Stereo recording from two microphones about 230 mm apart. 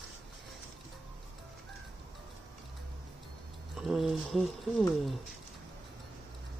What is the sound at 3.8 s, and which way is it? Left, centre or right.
Speech, centre.